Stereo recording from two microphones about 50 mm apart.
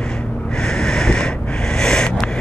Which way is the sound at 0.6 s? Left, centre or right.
Centre.